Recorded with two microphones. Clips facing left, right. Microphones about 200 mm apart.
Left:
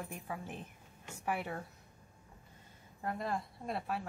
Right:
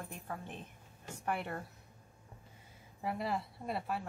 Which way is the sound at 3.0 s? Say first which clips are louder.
Right 1 dB; 5° right (ahead or behind).